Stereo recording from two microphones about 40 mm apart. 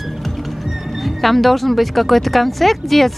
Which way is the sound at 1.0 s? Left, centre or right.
Centre.